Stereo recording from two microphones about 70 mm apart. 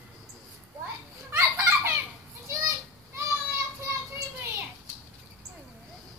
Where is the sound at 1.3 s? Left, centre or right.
Right.